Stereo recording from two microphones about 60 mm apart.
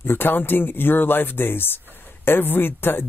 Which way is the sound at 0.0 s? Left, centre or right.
Left.